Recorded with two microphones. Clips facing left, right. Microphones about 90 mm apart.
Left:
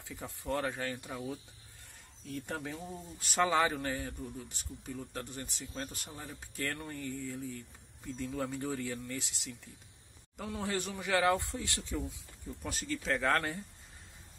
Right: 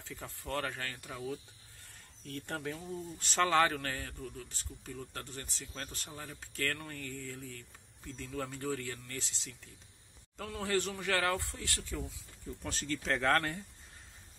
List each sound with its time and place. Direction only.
0.0 s speech: 15° left (ahead or behind)
2.2 s speech: 5° left (ahead or behind)
12.6 s speech: 5° left (ahead or behind)